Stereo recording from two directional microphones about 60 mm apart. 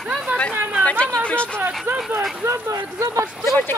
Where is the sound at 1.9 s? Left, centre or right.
Right.